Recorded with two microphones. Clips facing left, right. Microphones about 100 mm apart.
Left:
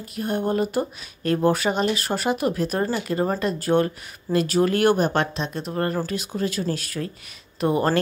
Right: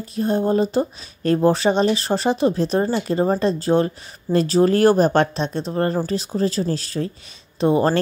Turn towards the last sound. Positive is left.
turn(degrees=-25)  # may be behind; listen again after turning